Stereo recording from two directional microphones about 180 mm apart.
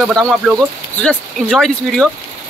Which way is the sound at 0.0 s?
5° left (ahead or behind).